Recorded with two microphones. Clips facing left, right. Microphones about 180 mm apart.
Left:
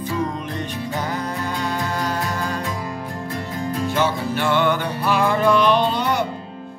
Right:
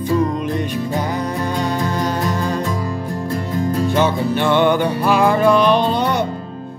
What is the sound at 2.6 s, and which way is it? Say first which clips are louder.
Music: right 5 dB; 45° right (ahead or behind).